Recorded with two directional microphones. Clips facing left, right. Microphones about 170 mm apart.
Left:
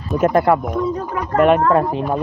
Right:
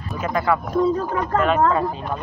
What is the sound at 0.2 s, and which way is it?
Speech, 55° left (ahead or behind).